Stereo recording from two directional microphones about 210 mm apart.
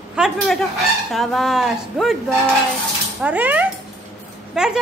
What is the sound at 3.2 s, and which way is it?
A woman's voice, 5° right (ahead or behind).